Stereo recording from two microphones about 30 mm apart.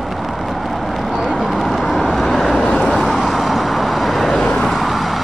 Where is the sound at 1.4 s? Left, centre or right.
Centre.